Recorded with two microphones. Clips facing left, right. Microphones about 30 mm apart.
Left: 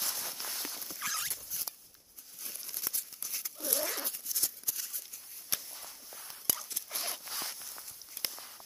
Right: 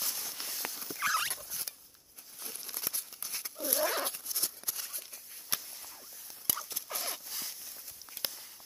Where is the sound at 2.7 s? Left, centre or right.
Right.